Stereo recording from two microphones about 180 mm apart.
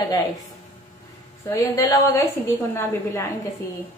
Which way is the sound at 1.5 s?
20° left (ahead or behind).